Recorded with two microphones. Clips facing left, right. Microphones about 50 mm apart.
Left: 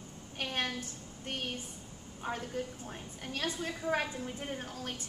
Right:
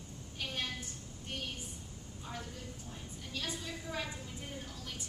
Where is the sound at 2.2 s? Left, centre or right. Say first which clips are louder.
Left 9 dB; left.